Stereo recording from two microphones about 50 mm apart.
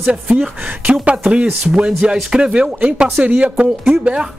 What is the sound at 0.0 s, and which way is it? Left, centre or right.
Speech, centre.